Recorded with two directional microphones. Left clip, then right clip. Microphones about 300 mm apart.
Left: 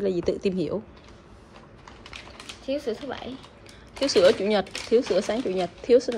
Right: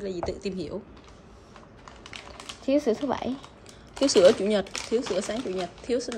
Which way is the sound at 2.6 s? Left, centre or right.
Right.